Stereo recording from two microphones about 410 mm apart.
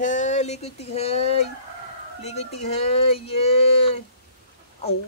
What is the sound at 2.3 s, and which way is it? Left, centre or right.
Speech, centre.